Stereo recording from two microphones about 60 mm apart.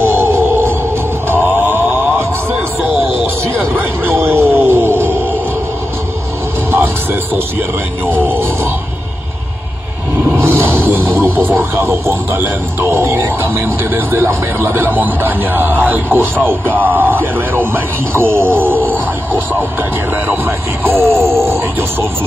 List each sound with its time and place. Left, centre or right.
0.0 s music: right
1.3 s a sound: right
3.5 s a sound: right
8.1 s music: right
10.4 s music: right
11.7 s speech: right
20.2 s speech: right
21.2 s grunt: right